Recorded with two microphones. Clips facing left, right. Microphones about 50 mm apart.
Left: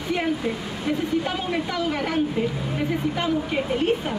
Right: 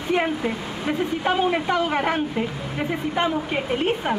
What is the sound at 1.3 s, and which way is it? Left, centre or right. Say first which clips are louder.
Speech: right 5 dB; right.